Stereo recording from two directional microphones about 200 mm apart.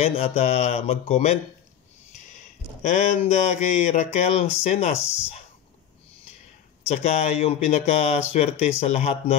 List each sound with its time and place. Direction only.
0.0 s speech: 30° left (ahead or behind)
6.9 s speech: 35° left (ahead or behind)